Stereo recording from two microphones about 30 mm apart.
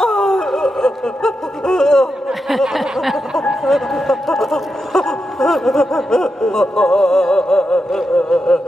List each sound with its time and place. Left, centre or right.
0.0 s a sound: centre
0.8 s speech: centre
2.4 s speech: centre
5.8 s speech: centre